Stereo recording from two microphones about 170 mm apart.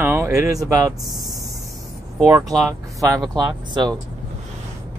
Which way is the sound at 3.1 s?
25° right (ahead or behind).